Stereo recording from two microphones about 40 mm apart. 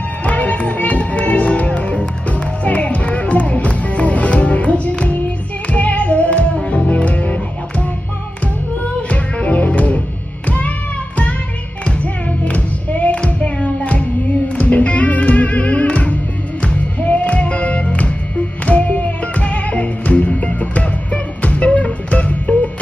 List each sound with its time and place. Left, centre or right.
0.2 s music: left
9.1 s music: left
11.8 s music: left